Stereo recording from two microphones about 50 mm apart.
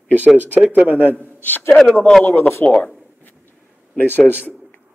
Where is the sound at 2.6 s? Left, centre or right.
Left.